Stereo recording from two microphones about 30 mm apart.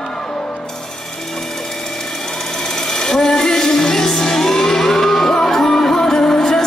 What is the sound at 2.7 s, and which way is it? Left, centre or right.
Music, left.